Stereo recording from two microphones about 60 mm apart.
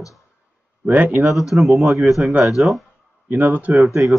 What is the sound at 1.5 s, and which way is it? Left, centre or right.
Speech, centre.